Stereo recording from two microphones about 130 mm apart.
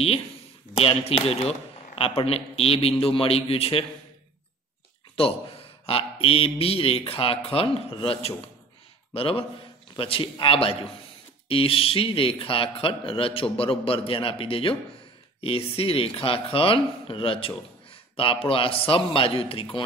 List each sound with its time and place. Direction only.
0.7 s a man's voice: 50° left (ahead or behind)
5.9 s a man's voice: 45° left (ahead or behind)